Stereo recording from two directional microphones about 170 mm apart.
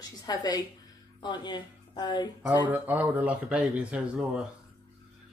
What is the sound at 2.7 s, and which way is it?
Speech, 10° right (ahead or behind).